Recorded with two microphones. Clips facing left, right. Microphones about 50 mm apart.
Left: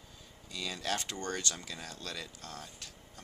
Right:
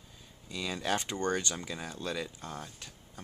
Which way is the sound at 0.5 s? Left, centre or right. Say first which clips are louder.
Right 4 dB; centre.